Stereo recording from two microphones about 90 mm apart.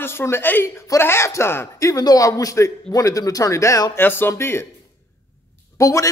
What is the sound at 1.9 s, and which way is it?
Speech, 40° left (ahead or behind).